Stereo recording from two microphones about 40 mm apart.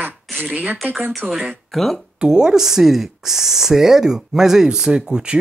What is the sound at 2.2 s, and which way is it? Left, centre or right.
Speech, centre.